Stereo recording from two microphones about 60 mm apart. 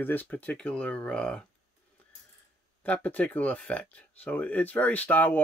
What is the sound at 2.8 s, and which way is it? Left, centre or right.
Speech, left.